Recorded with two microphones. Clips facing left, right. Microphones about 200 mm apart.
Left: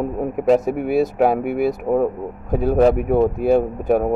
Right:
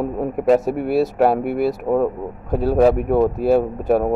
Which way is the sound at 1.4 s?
50° left (ahead or behind).